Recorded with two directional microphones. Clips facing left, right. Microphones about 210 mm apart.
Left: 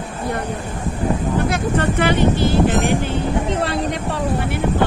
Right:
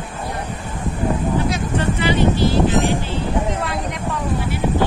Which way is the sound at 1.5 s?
55° left (ahead or behind).